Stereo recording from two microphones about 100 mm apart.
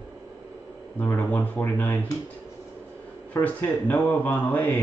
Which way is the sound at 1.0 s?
20° left (ahead or behind).